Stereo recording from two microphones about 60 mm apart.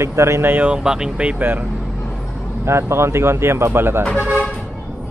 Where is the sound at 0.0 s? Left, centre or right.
Right.